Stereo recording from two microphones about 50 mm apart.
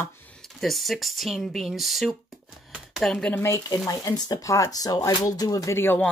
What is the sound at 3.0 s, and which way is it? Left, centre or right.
Speech, centre.